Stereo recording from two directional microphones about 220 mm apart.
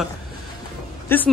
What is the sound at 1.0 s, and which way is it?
Speech, 10° left (ahead or behind).